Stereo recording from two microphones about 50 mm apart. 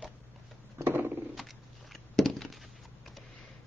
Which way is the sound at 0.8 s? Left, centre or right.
Right.